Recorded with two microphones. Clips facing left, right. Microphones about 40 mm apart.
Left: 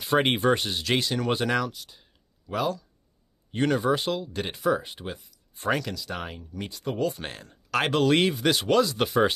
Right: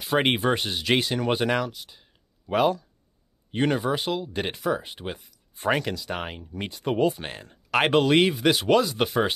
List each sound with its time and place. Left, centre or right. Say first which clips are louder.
0.0 s speech: even; centre
2.5 s speech: right 6 dB; right
3.5 s speech: even; centre
4.6 s speech: left 5 dB; centre
5.7 s speech: right 2 dB; right
7.0 s speech: right 4 dB; centre
7.7 s speech: right 4 dB; right
8.0 s speech: right 2 dB; centre